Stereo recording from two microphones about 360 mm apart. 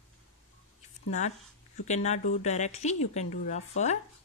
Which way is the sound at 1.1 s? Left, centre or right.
Centre.